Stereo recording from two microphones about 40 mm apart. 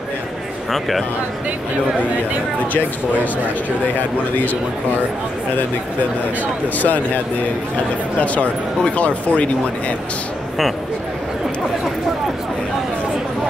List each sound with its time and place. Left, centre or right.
0.7 s speech: centre
6.4 s speech: left
8.2 s speech: left